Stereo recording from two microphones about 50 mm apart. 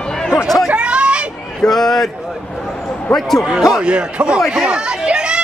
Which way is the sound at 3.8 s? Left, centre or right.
Right.